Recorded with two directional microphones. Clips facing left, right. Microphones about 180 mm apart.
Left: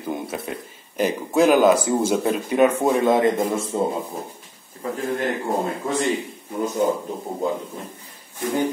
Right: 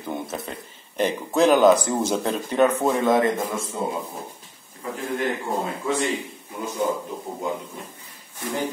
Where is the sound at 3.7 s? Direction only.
30° left (ahead or behind).